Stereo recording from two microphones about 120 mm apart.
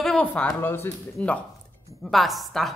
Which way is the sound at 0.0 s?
5° left (ahead or behind).